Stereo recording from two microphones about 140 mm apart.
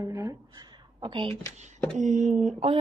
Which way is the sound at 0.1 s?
20° right (ahead or behind).